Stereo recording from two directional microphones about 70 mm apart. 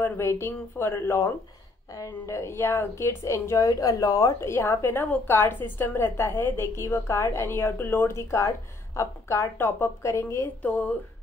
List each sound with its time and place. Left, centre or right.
0.0 s a woman's voice: left
4.4 s a woman's voice: left
8.2 s a woman's voice: left
9.6 s a woman's voice: left
10.0 s a woman's voice: left
10.4 s speech: left